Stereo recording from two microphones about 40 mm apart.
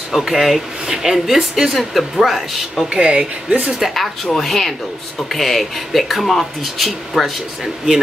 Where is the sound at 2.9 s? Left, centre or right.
Right.